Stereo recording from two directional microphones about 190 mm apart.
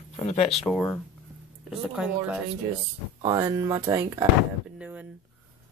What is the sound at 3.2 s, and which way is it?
Speech, 25° right (ahead or behind).